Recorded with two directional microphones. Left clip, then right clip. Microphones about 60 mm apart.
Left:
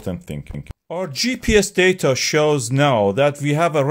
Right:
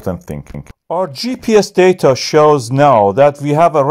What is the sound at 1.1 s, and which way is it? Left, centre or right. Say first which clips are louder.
Speech: right 3 dB; right.